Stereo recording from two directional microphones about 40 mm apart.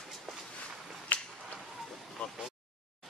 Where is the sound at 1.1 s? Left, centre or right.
Left.